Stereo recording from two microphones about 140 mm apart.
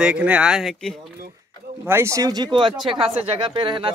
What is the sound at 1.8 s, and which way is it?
Speech, 20° right (ahead or behind).